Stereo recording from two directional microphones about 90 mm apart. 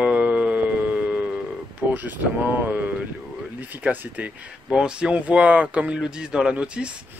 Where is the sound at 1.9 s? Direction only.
20° right (ahead or behind).